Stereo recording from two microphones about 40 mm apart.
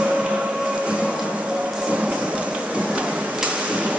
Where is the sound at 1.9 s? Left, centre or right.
Right.